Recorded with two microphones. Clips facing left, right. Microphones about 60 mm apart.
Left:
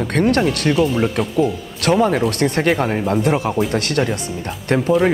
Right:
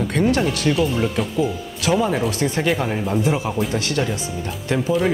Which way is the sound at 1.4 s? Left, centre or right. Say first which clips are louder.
Left 4 dB; left.